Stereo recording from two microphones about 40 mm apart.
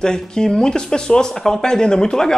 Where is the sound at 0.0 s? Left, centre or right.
Centre.